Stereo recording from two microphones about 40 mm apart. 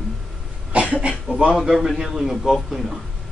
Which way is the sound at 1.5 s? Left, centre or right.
Centre.